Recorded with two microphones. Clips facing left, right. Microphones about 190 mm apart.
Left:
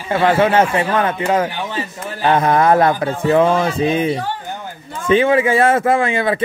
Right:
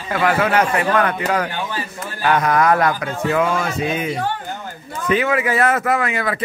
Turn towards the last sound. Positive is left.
turn(degrees=25)  # may be behind; listen again after turning